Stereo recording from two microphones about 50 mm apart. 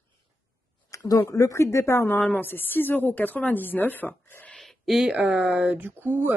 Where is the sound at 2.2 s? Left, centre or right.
Left.